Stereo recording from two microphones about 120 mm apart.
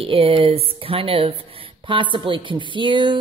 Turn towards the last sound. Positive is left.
turn(degrees=-45)  # may be behind; listen again after turning